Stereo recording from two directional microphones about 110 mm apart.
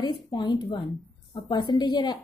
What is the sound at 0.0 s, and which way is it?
A woman's voice, 40° left (ahead or behind).